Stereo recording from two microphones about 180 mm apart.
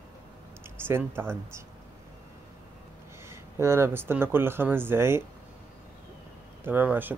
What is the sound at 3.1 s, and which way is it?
Speech, 15° right (ahead or behind).